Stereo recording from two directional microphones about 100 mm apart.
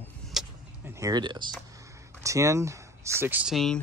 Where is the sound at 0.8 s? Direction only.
30° right (ahead or behind).